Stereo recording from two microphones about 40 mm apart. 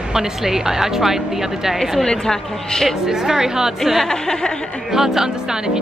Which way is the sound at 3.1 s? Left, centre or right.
Centre.